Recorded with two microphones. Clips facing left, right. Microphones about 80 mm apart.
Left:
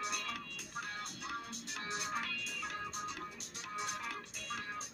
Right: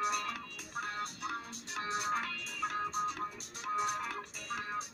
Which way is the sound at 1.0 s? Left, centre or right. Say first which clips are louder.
Right 4 dB; right.